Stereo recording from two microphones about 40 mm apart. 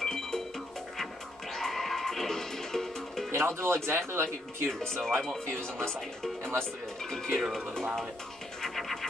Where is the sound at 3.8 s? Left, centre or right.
Right.